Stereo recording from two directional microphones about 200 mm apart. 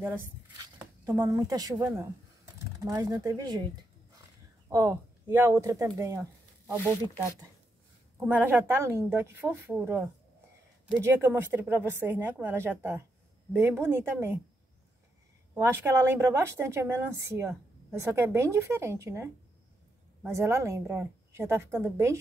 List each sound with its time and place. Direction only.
0.7 s a woman's voice: 15° right (ahead or behind)
4.6 s a woman's voice: 15° right (ahead or behind)
8.2 s a woman's voice: 10° right (ahead or behind)
15.5 s a woman's voice: 10° right (ahead or behind)
20.2 s a woman's voice: 15° right (ahead or behind)